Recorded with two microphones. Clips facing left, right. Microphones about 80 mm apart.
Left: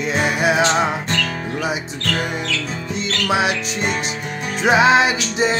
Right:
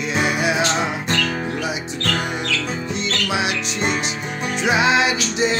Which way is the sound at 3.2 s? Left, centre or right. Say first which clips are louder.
Left 5 dB; left.